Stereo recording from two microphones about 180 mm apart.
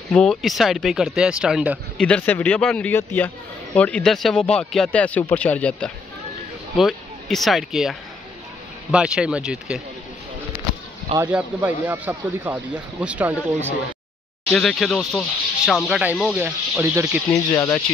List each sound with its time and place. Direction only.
0.1 s speech: centre (ahead or behind)
2.0 s speech: 5° left (ahead or behind)
11.3 s speech: 10° right (ahead or behind)
14.5 s speech: 5° left (ahead or behind); by 17.2 s 10° right (ahead or behind)
17.3 s speech: 20° left (ahead or behind)